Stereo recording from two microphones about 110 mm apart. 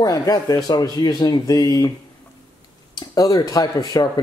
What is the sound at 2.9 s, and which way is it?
Speech, 35° left (ahead or behind).